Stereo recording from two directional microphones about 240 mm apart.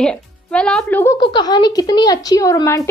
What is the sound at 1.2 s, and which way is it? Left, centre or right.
Speech, centre.